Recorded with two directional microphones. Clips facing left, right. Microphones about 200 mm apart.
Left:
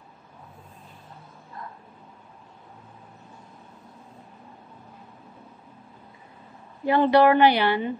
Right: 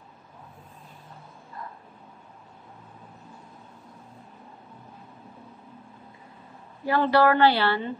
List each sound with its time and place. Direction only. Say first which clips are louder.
6.8 s a woman's voice: left 3 dB; 20° left (ahead or behind)